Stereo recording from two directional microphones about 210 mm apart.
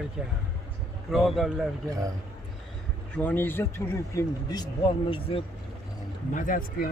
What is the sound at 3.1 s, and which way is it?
Speech, 10° left (ahead or behind).